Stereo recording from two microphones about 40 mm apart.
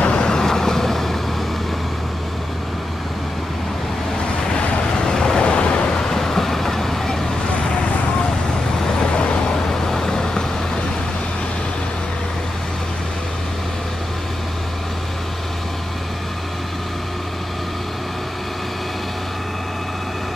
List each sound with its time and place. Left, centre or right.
0.0 s vehicle: left; by 1.1 s centre
5.0 s waves: centre
5.4 s waves: left
6.0 s vehicle: centre
9.1 s vehicle: left
9.7 s vehicle: centre